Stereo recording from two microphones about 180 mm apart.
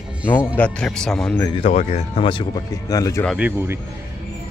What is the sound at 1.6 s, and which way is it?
Speech, 35° left (ahead or behind).